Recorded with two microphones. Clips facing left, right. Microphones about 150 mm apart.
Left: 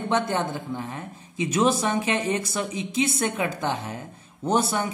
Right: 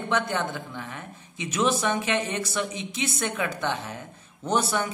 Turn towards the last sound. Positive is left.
turn(degrees=25)  # may be behind; listen again after turning